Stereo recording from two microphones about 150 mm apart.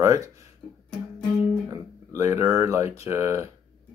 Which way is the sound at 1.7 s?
20° right (ahead or behind).